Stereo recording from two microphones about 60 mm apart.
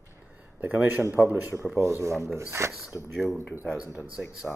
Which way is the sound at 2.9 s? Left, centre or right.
Left.